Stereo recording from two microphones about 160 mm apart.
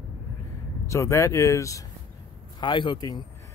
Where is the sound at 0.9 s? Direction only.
15° left (ahead or behind).